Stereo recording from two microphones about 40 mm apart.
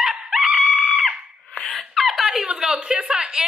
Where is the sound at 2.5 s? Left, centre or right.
Centre.